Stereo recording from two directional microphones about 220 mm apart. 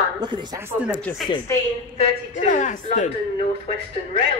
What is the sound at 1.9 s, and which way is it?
A man's voice, 30° left (ahead or behind).